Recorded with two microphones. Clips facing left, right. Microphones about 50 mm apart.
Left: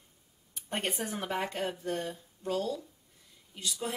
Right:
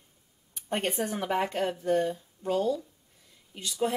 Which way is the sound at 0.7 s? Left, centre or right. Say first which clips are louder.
Right 5 dB; centre.